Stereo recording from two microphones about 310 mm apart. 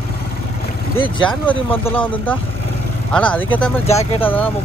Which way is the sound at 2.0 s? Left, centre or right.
Centre.